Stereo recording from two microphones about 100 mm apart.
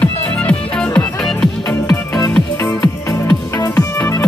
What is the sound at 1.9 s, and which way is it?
Music, 40° left (ahead or behind).